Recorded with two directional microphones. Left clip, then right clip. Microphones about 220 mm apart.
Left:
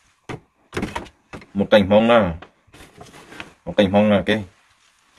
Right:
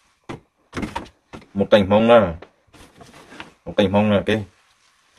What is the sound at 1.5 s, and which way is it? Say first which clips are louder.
Speech: left 1 dB; centre (ahead or behind).